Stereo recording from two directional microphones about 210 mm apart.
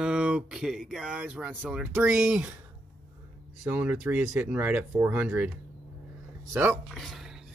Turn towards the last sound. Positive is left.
turn(degrees=0)  # may be behind; listen again after turning